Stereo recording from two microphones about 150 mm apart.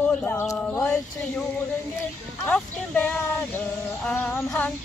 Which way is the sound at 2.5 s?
10° left (ahead or behind).